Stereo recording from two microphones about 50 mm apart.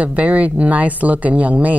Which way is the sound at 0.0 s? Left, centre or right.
Right.